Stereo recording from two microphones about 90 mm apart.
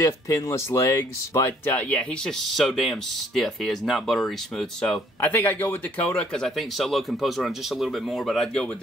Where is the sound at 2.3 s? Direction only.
5° left (ahead or behind).